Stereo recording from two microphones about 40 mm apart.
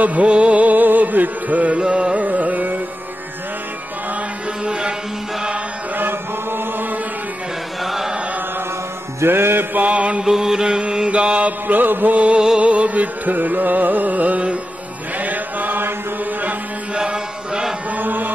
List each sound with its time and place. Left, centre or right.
0.0 s music: right
1.8 s music: right
2.2 s music: right
4.6 s music: right
5.9 s chant: right
7.8 s chant: centre
9.2 s mantra: right
9.8 s mantra: right
10.2 s mantra: centre
11.6 s music: right
12.5 s music: right
15.1 s chant: right
16.9 s mantra: right
17.9 s chant: right